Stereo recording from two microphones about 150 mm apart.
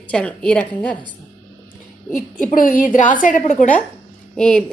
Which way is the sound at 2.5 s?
65° left (ahead or behind).